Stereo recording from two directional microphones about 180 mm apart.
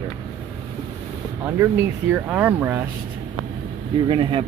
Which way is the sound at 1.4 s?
10° right (ahead or behind).